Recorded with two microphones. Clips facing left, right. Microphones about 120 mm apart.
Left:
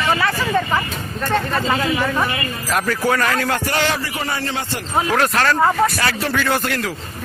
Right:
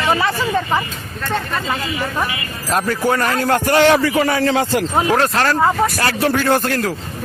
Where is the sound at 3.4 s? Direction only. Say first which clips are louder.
Right 6 dB; 45° right (ahead or behind).